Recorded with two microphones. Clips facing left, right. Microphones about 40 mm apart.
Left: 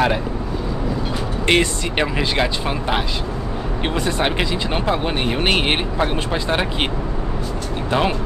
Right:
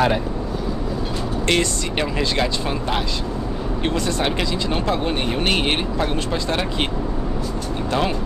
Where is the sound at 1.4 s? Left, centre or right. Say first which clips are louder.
Left 3 dB; left.